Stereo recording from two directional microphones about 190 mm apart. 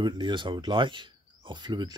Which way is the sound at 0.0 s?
25° right (ahead or behind).